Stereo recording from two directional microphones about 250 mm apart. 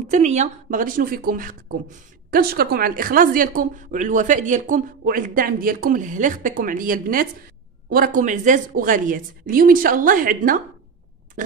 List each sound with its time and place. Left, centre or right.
0.1 s speech: right